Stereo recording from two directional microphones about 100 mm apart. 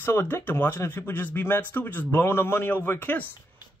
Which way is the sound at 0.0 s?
20° left (ahead or behind).